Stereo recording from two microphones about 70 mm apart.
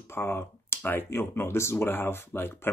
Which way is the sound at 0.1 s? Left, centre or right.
Left.